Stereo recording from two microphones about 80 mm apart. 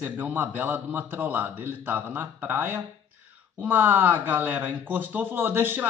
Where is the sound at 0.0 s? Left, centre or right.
Right.